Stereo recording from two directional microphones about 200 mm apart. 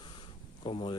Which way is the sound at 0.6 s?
25° left (ahead or behind).